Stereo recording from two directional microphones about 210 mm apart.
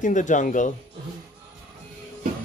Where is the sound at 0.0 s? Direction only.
35° left (ahead or behind).